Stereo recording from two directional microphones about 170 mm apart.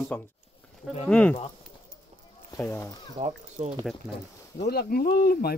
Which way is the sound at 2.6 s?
15° left (ahead or behind).